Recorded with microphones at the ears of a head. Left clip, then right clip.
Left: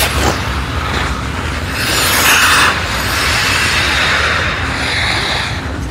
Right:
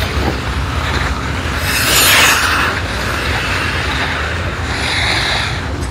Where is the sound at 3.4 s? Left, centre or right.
Left.